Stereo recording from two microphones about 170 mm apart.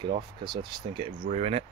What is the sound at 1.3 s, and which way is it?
Speech, 40° right (ahead or behind).